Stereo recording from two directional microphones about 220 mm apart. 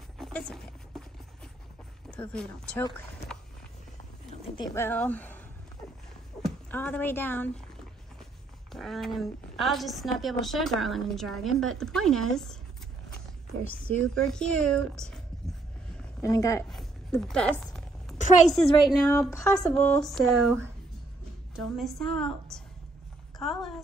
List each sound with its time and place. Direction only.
0.2 s a sound: 5° left (ahead or behind)
2.0 s speech: 5° left (ahead or behind)
4.6 s speech: 15° left (ahead or behind)
6.4 s speech: 10° left (ahead or behind)
8.7 s a woman's voice: centre (ahead or behind)
14.0 s a woman's voice: 5° left (ahead or behind)
16.2 s speech: 15° left (ahead or behind)
16.6 s a sound: centre (ahead or behind)
18.1 s a sound: 35° left (ahead or behind)
19.0 s a woman's voice: 10° left (ahead or behind)
21.7 s a woman's voice: centre (ahead or behind)